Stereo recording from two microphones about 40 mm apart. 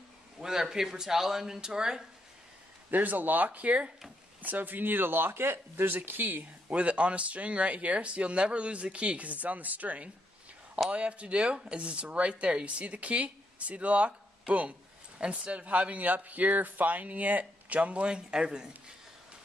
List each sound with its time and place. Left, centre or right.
0.4 s speech: centre
2.9 s speech: right
4.4 s speech: right
5.9 s speech: right
6.7 s speech: right
18.1 s speech: right